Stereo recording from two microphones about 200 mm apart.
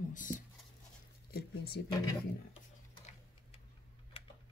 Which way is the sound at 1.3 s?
50° left (ahead or behind).